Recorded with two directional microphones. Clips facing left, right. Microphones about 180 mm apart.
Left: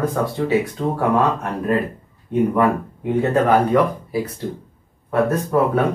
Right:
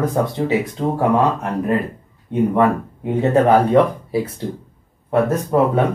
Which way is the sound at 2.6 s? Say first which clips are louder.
Right 1 dB; 25° right (ahead or behind).